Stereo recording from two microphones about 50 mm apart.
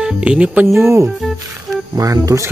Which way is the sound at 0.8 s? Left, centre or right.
Right.